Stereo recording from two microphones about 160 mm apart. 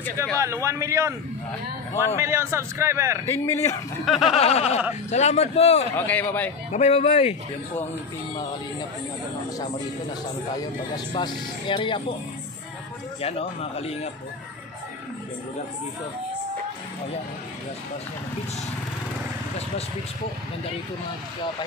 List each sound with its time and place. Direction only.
0.4 s a man's voice: 20° right (ahead or behind)
3.3 s a man's voice: 15° left (ahead or behind)
4.0 s snicker: centre (ahead or behind)
4.4 s a man's voice: 40° left (ahead or behind)
5.9 s a man's voice: 10° left (ahead or behind)
6.7 s speech: 45° left (ahead or behind)
11.1 s speech: 30° left (ahead or behind)
13.2 s speech: 40° left (ahead or behind)